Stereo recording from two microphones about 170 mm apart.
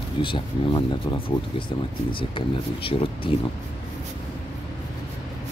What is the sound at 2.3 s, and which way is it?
Speech, 30° left (ahead or behind).